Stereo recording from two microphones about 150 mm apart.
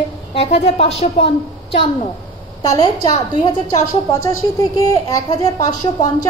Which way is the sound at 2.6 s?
25° left (ahead or behind).